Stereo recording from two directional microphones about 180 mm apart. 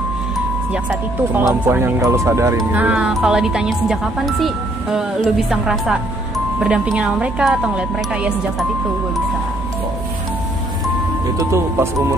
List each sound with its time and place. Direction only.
1.3 s speech: 15° right (ahead or behind)
11.3 s speech: 15° right (ahead or behind)